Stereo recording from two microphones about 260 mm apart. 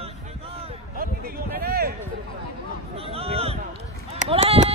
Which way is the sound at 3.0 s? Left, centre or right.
Right.